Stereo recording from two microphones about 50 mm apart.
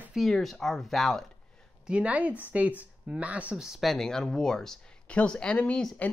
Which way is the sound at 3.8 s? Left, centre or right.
Centre.